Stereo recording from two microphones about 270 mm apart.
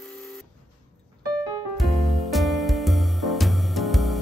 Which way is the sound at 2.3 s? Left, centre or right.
Centre.